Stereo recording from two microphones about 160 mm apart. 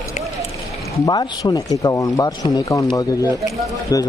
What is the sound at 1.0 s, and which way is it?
Speech, 25° left (ahead or behind).